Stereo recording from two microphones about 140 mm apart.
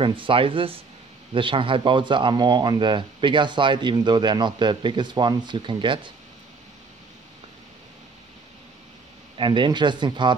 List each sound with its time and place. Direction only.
0.0 s speech: 35° right (ahead or behind)
9.4 s speech: 35° right (ahead or behind)